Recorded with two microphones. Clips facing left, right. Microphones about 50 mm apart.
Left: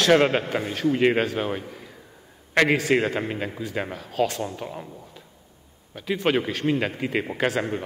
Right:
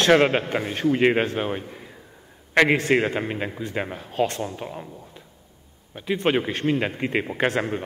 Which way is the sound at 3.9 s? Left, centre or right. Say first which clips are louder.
Even; right.